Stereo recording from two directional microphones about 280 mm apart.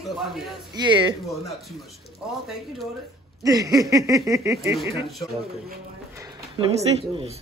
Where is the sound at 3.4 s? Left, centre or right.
Centre.